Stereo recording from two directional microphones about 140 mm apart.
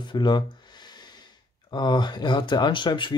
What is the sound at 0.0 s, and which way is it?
Speech, 35° left (ahead or behind).